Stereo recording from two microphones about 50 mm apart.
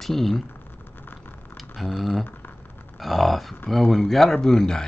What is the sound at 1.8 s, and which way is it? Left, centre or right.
Speech, centre.